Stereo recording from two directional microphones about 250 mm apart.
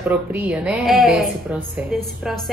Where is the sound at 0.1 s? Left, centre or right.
Centre.